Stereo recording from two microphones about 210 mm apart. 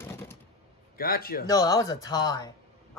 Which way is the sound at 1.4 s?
15° left (ahead or behind).